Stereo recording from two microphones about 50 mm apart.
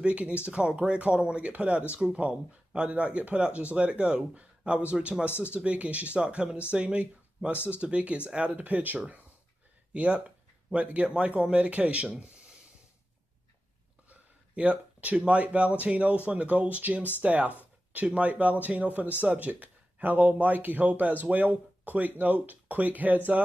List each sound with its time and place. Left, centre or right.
0.0 s speech: right
8.5 s speech: right
14.0 s a sound: right
15.8 s speech: right